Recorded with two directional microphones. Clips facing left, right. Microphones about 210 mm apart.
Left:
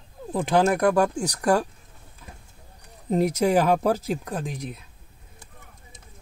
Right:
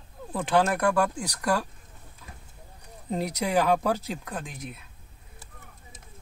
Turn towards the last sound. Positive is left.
turn(degrees=40)  # may be behind; listen again after turning